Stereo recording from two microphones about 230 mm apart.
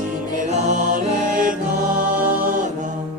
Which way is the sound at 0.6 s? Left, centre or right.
Right.